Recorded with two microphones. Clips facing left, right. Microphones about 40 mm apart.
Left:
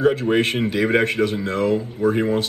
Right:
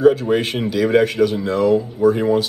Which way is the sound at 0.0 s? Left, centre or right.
Left.